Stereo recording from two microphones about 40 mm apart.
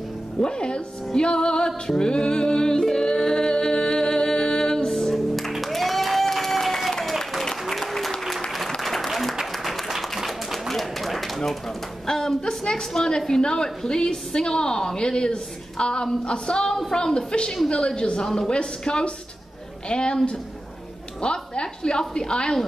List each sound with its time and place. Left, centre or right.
0.4 s a woman's voice: left
2.0 s music: centre
5.1 s music: centre
5.5 s applause: centre
10.1 s a sound: centre
10.7 s bird: centre
12.1 s a woman's voice: centre
21.2 s music: left